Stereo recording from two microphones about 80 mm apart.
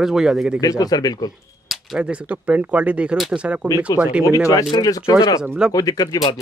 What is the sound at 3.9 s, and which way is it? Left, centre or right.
Speech, left.